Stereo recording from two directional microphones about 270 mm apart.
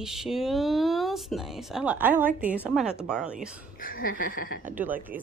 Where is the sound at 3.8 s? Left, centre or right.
Left.